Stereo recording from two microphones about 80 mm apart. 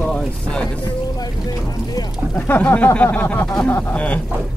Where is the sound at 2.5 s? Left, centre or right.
Left.